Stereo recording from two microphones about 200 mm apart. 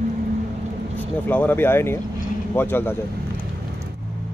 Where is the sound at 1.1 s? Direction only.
10° left (ahead or behind).